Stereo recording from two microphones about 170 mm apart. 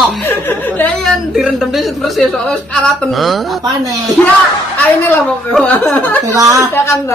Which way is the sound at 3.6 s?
20° right (ahead or behind).